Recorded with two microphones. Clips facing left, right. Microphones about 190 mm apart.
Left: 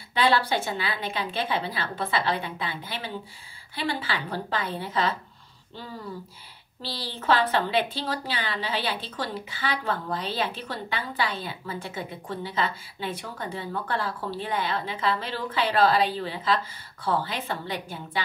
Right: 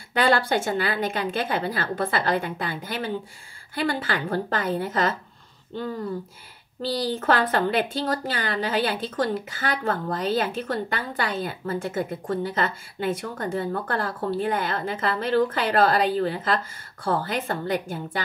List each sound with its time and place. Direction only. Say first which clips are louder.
0.1 s a woman's voice: right 2 dB; 50° right (ahead or behind)
7.2 s a woman's voice: left 1 dB; 50° right (ahead or behind)